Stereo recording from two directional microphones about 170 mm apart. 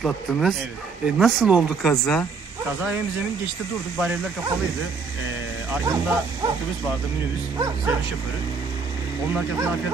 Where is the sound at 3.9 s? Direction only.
5° right (ahead or behind).